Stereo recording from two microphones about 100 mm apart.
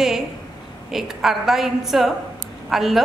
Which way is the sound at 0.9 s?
5° right (ahead or behind).